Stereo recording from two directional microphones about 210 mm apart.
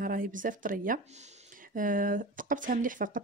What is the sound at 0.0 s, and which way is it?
Speech, 40° right (ahead or behind).